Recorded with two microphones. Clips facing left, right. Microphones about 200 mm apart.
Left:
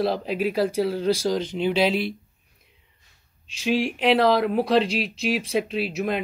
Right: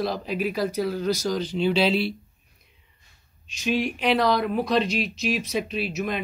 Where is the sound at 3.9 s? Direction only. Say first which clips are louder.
Left 5 dB; 20° left (ahead or behind).